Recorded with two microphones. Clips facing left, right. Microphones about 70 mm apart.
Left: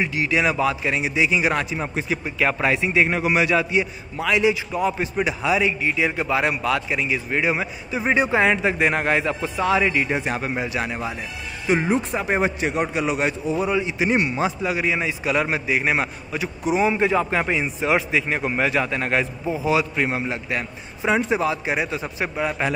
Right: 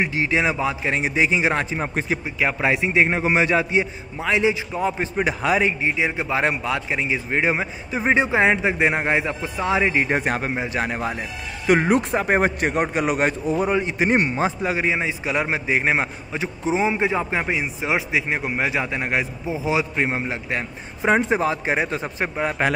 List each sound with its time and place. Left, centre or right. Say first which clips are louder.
0.0 s a man's voice: even; right
0.9 s a man's voice: right 1 dB; right
1.4 s a man's voice: right 1 dB; right
2.2 s a man's voice: left 2 dB; centre; by 5.9 s right
5.9 s a man's voice: left 1 dB; centre
6.3 s a man's voice: even; right
10.0 s a man's voice: right 2 dB; right
11.9 s a man's voice: right 3 dB; right
14.8 s a man's voice: right 1 dB; right
22.6 s a man's voice: right 4 dB; right